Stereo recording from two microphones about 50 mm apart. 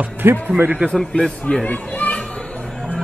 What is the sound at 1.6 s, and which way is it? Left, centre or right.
Children playing, left.